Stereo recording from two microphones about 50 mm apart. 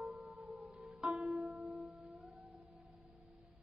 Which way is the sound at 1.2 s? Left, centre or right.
Right.